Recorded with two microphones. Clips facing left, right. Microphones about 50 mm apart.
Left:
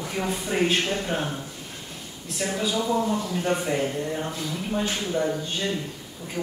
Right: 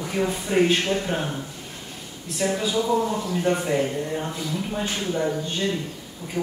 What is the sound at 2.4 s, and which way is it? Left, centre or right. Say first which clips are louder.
Speech: right 3 dB; centre.